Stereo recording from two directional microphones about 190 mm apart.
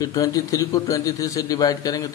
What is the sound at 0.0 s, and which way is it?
A man's voice, 20° left (ahead or behind).